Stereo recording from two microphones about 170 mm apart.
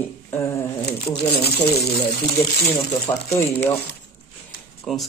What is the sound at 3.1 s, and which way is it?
Speech, 25° left (ahead or behind).